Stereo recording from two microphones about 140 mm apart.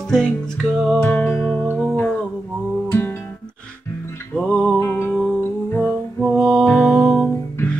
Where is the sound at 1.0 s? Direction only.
15° left (ahead or behind).